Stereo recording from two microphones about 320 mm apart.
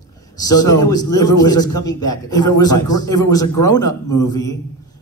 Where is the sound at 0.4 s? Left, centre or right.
Centre.